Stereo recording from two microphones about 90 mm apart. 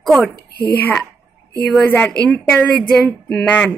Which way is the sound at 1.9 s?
15° left (ahead or behind).